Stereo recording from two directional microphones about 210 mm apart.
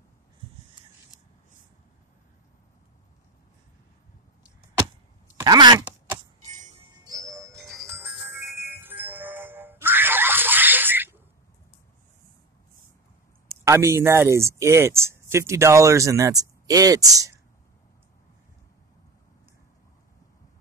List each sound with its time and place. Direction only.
5.4 s a sound: 20° right (ahead or behind)
7.1 s music: 15° right (ahead or behind)
7.5 s music: centre (ahead or behind)
13.5 s speech: 15° right (ahead or behind)